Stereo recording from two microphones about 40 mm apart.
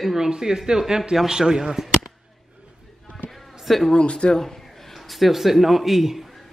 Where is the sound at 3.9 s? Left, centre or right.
Left.